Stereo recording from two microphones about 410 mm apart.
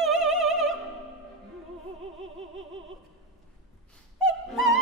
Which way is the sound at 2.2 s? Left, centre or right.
Right.